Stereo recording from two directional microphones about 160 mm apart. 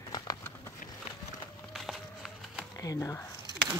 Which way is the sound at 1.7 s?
Centre (ahead or behind).